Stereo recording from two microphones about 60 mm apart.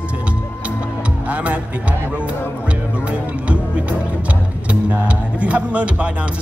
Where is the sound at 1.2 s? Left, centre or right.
Right.